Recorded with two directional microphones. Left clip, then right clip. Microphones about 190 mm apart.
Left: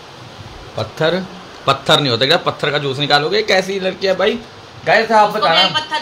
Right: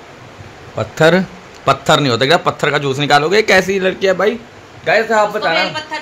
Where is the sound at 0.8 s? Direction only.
50° right (ahead or behind).